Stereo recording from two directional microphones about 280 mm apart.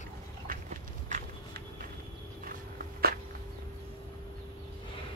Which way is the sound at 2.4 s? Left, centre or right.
Right.